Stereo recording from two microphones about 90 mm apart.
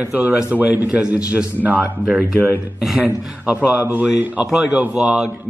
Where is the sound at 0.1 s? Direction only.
10° right (ahead or behind).